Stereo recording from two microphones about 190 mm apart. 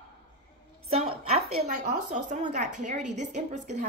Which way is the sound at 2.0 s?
40° right (ahead or behind).